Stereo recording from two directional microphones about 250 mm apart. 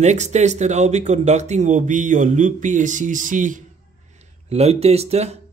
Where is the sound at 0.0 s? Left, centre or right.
Right.